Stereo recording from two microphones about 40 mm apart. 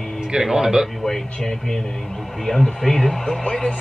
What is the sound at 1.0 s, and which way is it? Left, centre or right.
Speech, centre.